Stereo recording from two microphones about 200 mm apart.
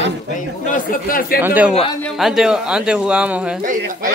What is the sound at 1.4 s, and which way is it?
Speech, 10° right (ahead or behind).